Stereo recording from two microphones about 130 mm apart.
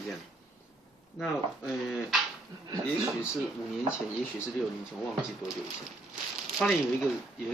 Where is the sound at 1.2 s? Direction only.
Centre (ahead or behind).